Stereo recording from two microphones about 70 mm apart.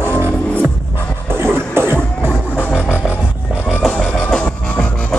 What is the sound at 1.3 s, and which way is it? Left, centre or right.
Music, right.